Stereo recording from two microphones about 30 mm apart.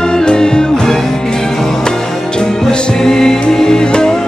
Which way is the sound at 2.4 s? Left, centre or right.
Left.